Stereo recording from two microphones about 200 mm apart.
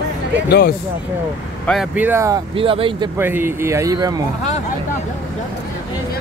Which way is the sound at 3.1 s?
10° right (ahead or behind).